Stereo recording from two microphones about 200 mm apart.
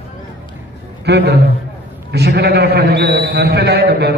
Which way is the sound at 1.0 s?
55° right (ahead or behind).